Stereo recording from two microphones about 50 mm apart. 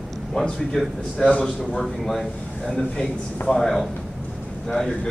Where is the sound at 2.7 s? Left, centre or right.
Centre.